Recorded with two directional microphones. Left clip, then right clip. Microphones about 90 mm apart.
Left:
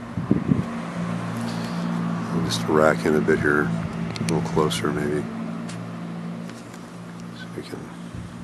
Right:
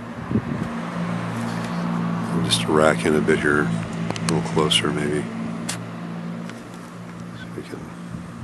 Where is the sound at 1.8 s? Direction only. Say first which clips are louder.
Right 2 dB; 25° right (ahead or behind).